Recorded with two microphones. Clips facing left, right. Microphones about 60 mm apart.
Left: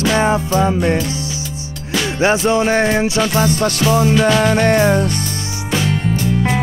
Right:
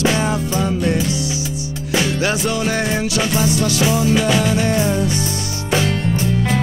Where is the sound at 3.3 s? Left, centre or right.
Left.